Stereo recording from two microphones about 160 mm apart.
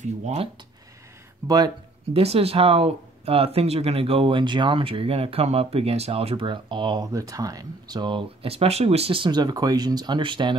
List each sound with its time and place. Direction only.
0.0 s speech: 45° right (ahead or behind)
1.4 s speech: 20° right (ahead or behind)
2.1 s speech: 40° right (ahead or behind)